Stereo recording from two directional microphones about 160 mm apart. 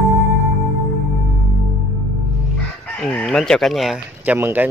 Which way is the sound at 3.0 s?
5° left (ahead or behind).